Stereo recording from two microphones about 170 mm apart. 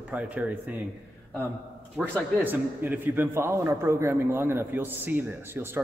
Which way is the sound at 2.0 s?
5° right (ahead or behind).